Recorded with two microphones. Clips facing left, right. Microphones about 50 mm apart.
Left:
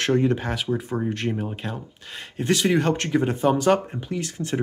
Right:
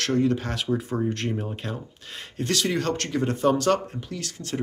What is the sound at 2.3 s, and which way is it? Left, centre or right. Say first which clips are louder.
Speech: left 5 dB; centre.